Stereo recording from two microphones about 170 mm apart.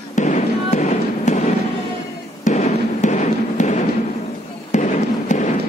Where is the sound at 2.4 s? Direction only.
45° left (ahead or behind).